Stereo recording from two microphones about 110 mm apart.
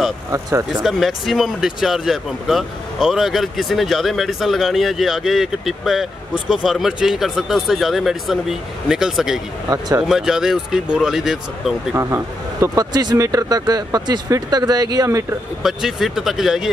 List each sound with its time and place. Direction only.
0.3 s speech: 30° right (ahead or behind)
0.8 s speech: centre (ahead or behind)
9.7 s speech: 25° right (ahead or behind)
10.0 s speech: 5° right (ahead or behind)
11.9 s speech: 25° right (ahead or behind)
12.6 s speech: 35° right (ahead or behind)
15.6 s speech: 5° right (ahead or behind)